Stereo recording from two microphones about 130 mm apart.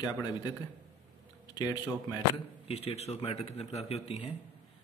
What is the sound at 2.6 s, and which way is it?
Speech, 50° left (ahead or behind).